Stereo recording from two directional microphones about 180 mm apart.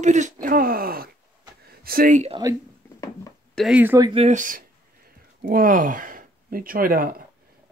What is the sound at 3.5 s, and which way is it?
Speech, 5° right (ahead or behind).